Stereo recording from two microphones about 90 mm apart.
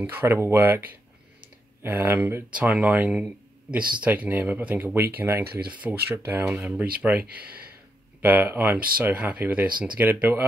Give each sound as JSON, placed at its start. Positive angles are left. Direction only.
{"t": 0.0, "sound": "speech", "side_deg": -25}
{"t": 2.5, "sound": "speech", "side_deg": -15}